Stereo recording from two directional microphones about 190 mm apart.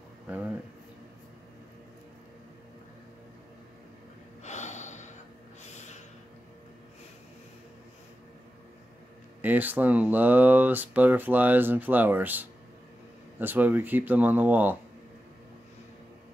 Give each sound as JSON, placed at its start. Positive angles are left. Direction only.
{"t": 4.4, "sound": "gasp", "side_deg": 40}
{"t": 9.4, "sound": "speech", "side_deg": -10}